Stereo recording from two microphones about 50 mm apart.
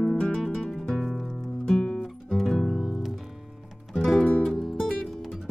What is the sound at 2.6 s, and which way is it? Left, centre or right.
Music, centre.